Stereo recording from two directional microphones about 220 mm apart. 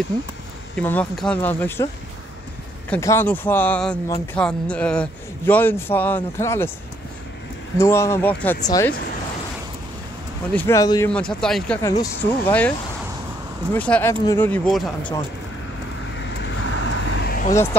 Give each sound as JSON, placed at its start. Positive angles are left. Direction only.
{"t": 0.7, "sound": "a man's voice", "side_deg": 5}
{"t": 2.9, "sound": "a man's voice", "side_deg": 10}
{"t": 7.7, "sound": "a man's voice", "side_deg": 10}
{"t": 10.5, "sound": "a man's voice", "side_deg": 10}
{"t": 11.1, "sound": "a man's voice", "side_deg": 5}
{"t": 13.7, "sound": "a man's voice", "side_deg": 5}
{"t": 16.2, "sound": "vehicle", "side_deg": 55}